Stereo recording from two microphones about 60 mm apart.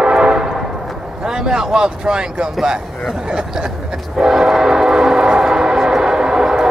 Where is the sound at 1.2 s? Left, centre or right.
Centre.